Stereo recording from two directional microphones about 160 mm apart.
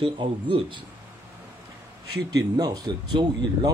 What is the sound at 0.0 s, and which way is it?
Speech, 30° right (ahead or behind).